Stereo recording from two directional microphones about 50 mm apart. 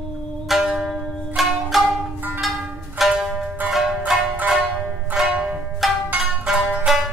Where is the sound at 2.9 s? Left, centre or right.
Centre.